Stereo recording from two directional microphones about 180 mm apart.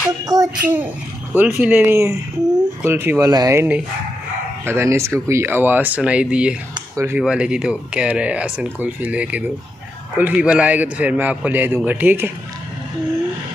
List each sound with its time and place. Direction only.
0.2 s child singing: 20° right (ahead or behind)
0.6 s speech: 10° right (ahead or behind)
6.7 s a sound: 15° right (ahead or behind)
7.2 s speech: 5° right (ahead or behind)